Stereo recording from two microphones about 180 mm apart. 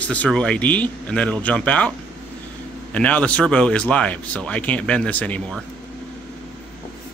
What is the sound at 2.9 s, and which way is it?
Speech, 5° left (ahead or behind).